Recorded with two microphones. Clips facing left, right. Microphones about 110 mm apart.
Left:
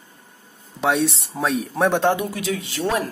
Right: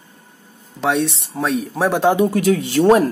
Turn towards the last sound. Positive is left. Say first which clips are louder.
# right 10 dB
turn(degrees=-45)  # may be behind; listen again after turning